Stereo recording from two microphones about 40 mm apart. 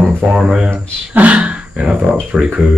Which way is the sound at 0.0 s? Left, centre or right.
Centre.